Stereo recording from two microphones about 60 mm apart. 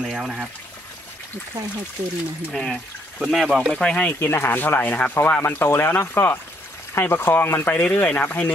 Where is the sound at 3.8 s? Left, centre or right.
Centre.